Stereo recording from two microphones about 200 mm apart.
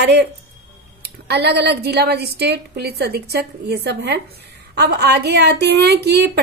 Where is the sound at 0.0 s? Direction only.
55° right (ahead or behind).